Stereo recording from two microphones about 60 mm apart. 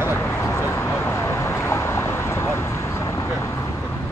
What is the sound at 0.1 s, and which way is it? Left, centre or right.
Vehicle, left.